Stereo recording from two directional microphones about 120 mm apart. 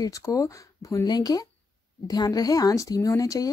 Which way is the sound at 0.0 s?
30° left (ahead or behind).